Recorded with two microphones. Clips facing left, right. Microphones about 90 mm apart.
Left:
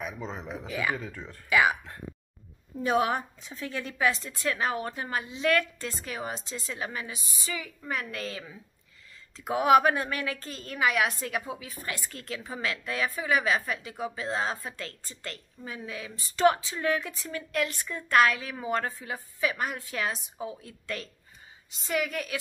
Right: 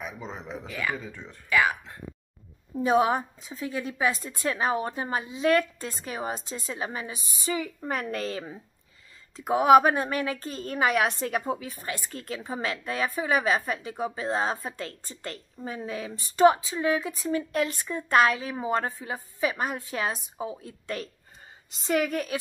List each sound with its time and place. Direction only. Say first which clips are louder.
0.0 s speech: left 1 dB; centre (ahead or behind)
2.8 s a woman's voice: right 3 dB; 20° right (ahead or behind); by 8.5 s 40° right (ahead or behind)
9.4 s a woman's voice: right 3 dB; 20° right (ahead or behind); by 11.6 s 40° right (ahead or behind)
11.8 s a woman's voice: right 2 dB; 25° right (ahead or behind)
16.3 s a woman's voice: right 4 dB; 20° right (ahead or behind)
21.8 s a woman's voice: right 4 dB; 45° right (ahead or behind)
22.3 s a woman's voice: right 3 dB; 30° right (ahead or behind)